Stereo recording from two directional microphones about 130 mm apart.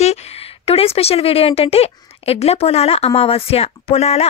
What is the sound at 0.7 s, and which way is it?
Speech, 50° left (ahead or behind).